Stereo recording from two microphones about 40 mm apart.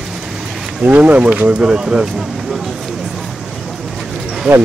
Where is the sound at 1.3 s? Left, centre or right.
Right.